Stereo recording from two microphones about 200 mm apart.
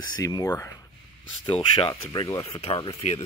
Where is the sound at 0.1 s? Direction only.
20° left (ahead or behind).